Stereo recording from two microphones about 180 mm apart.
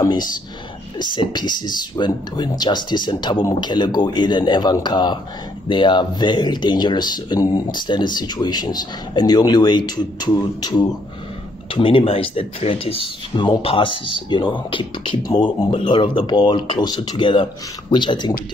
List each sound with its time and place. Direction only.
0.0 s speech: 25° left (ahead or behind)